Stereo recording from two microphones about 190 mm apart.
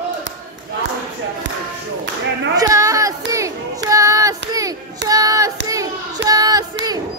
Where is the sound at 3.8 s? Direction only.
15° right (ahead or behind).